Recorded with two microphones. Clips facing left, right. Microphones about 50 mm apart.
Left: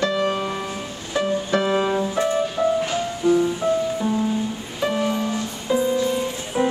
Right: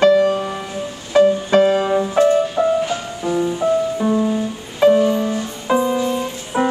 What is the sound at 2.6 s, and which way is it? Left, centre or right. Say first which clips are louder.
Music: even; right.